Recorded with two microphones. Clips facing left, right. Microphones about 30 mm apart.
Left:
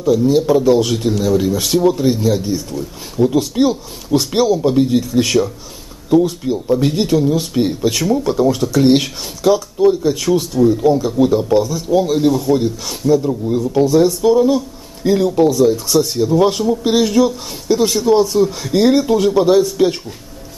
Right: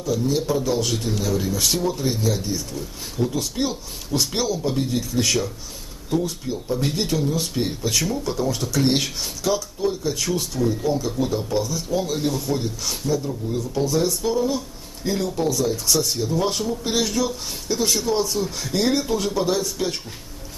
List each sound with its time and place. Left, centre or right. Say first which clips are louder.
0.2 s speech: left 9 dB; centre